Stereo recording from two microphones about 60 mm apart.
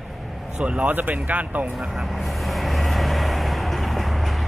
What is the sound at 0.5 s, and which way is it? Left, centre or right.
Speech, centre.